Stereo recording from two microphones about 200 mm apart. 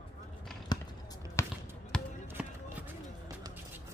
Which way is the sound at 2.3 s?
10° right (ahead or behind).